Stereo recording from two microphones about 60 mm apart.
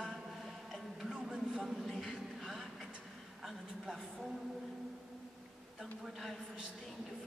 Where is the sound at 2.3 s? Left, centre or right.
Centre.